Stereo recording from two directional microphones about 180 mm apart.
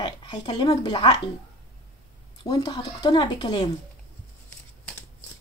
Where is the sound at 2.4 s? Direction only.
30° left (ahead or behind).